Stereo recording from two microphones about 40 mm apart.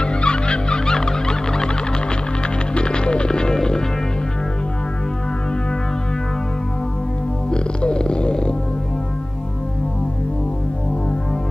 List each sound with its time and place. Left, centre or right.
0.0 s turkey: left
2.7 s music: left
7.5 s music: left